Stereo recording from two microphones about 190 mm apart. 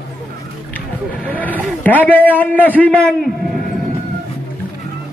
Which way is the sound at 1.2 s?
10° left (ahead or behind).